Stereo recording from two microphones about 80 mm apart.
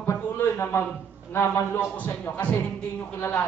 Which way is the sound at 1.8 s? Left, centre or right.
Centre.